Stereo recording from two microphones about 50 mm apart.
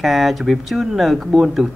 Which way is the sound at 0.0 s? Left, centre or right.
Centre.